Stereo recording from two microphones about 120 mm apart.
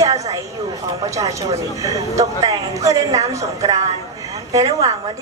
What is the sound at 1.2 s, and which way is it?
A woman's voice, 30° right (ahead or behind).